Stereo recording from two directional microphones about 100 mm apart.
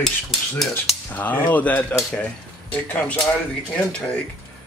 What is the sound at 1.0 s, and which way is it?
Speech, 15° left (ahead or behind).